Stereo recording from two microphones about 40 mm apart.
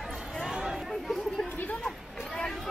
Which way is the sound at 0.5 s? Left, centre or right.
Centre.